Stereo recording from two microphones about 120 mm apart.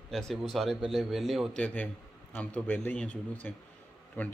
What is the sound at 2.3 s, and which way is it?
A man's voice, 10° left (ahead or behind).